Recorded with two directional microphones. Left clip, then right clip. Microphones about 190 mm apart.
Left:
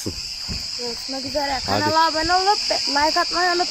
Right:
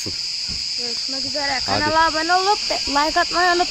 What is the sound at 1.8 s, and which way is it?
Speech, 30° right (ahead or behind).